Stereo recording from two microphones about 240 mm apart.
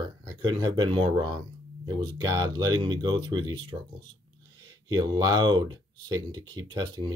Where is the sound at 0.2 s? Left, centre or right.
Centre.